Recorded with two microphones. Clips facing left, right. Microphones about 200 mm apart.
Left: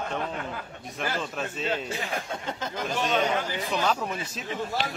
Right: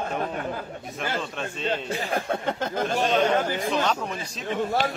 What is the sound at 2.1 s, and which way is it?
Speech, 55° right (ahead or behind).